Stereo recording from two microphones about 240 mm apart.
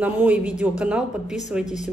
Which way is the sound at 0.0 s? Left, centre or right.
Centre.